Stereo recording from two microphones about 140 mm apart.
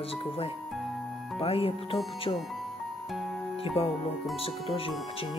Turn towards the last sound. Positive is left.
turn(degrees=45)  # may be behind; listen again after turning